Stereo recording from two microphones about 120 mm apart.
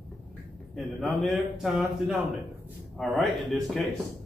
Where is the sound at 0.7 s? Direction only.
Centre (ahead or behind).